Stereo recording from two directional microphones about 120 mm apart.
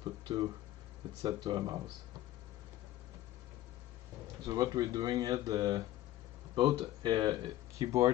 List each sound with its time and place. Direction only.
0.0 s a sound: 35° right (ahead or behind)
1.2 s speech: 35° right (ahead or behind)
4.5 s speech: 30° right (ahead or behind)